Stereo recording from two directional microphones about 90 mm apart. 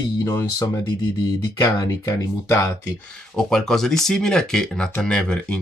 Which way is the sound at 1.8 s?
40° left (ahead or behind).